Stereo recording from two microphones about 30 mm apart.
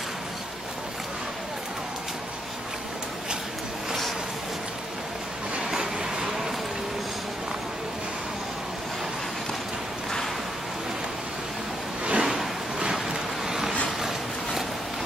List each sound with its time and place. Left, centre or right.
5.8 s vehicle: right
12.0 s a sound: right
13.5 s vehicle: centre